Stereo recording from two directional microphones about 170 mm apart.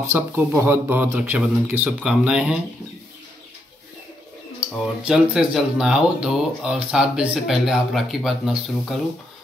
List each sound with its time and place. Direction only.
0.0 s speech: 15° right (ahead or behind)
4.6 s speech: 5° right (ahead or behind)